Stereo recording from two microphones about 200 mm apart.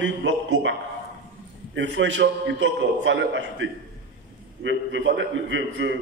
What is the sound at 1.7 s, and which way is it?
A man's voice, 65° right (ahead or behind).